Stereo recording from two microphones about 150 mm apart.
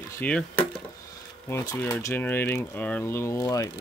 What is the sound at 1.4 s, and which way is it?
Speech, 20° left (ahead or behind).